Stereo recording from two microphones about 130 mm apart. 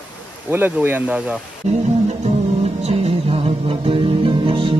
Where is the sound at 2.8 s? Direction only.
50° right (ahead or behind).